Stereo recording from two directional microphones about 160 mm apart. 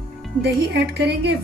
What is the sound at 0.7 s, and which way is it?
Speech, 90° right.